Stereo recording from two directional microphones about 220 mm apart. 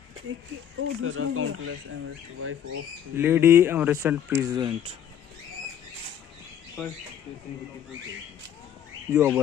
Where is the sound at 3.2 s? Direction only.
10° right (ahead or behind).